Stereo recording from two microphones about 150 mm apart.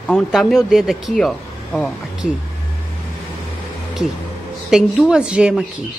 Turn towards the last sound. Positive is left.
turn(degrees=-5)  # may be behind; listen again after turning